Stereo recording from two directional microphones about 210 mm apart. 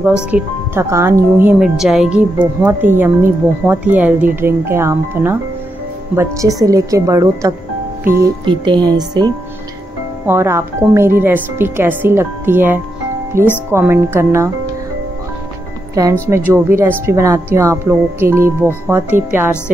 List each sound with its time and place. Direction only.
0.3 s speech: 10° right (ahead or behind)
15.9 s speech: 15° right (ahead or behind)